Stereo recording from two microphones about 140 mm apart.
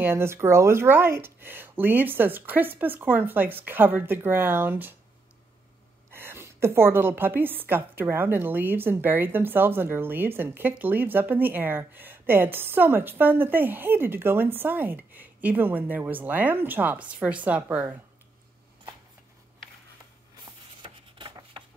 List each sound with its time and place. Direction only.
0.0 s a woman's voice: 15° right (ahead or behind)
6.1 s a woman's voice: 15° right (ahead or behind)
20.8 s a sound: 35° right (ahead or behind)